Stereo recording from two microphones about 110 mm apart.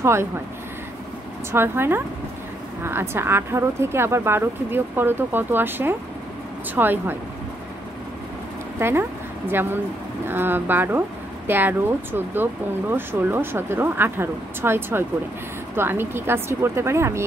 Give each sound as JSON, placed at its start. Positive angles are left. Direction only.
{"t": 0.0, "sound": "speech", "side_deg": -25}
{"t": 1.5, "sound": "speech", "side_deg": -20}
{"t": 8.7, "sound": "speech", "side_deg": -20}